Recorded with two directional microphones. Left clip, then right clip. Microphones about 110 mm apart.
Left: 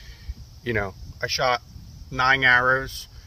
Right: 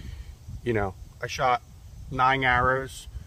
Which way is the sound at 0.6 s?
40° right (ahead or behind).